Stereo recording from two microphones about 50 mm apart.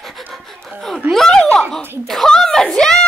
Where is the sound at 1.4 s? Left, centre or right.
Centre.